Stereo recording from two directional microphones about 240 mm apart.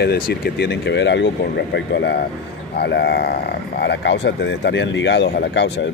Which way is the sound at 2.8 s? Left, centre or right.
Left.